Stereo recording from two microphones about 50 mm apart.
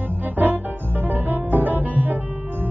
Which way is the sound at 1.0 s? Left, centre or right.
Right.